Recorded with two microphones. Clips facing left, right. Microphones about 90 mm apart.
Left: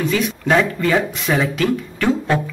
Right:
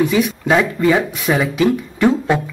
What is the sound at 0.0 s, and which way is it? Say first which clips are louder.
Speech: right 4 dB; 10° right (ahead or behind).